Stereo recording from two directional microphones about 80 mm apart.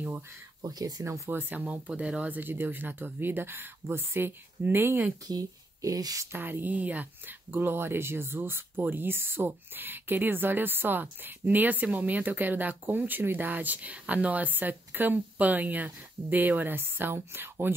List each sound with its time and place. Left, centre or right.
0.6 s speech: right
1.0 s speech: right
5.3 s speech: right
6.3 s speech: right